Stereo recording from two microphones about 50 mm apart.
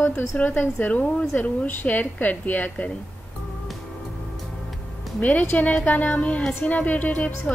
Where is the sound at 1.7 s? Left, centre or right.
Left.